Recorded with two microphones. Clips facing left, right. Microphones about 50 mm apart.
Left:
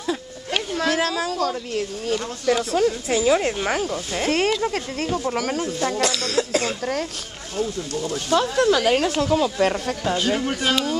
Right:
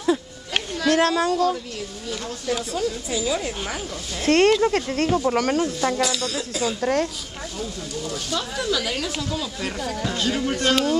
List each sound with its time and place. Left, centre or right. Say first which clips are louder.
0.8 s speech: right 5 dB; centre
2.4 s speech: left 5 dB; left
2.8 s a woman's voice: left 5 dB; left
4.2 s speech: right 5 dB; centre
6.2 s speech: left 3 dB; left
6.8 s speech: right 4 dB; centre
7.5 s speech: left 7 dB; left
8.5 s speech: left 7 dB; left
10.0 s speech: left 2 dB; centre